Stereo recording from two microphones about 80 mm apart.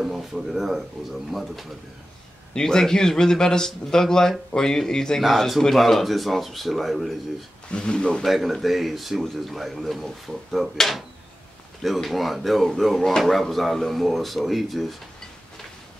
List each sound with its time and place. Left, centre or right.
0.0 s a man's voice: centre
7.7 s a man's voice: centre
8.2 s speech: centre